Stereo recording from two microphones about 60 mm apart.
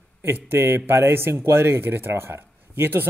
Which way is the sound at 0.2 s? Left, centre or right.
Right.